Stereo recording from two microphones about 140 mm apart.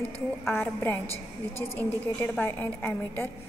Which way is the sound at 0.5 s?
15° left (ahead or behind).